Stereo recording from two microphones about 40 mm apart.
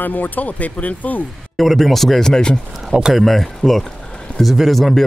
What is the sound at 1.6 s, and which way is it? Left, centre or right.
Speech, centre.